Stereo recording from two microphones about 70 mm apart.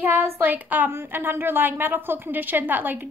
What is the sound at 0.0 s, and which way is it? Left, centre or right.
A woman's voice, right.